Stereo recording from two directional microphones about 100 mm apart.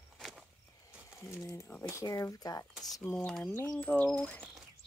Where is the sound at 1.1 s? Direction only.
25° left (ahead or behind).